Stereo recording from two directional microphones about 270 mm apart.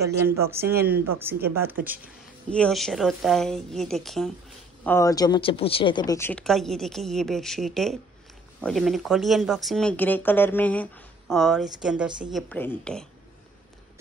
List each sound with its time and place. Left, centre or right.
0.0 s speech: centre
2.5 s speech: centre